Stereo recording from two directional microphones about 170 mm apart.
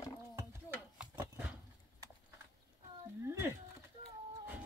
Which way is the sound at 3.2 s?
15° right (ahead or behind).